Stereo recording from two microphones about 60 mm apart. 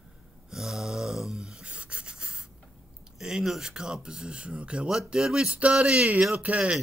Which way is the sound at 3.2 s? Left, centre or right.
Centre.